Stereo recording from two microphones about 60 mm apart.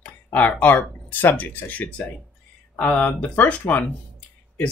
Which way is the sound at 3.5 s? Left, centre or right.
Left.